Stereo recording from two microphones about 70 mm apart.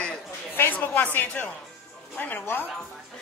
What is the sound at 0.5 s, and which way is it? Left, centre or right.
Speech, left.